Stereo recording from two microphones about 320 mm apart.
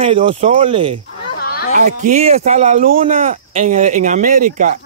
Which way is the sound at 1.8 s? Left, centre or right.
Right.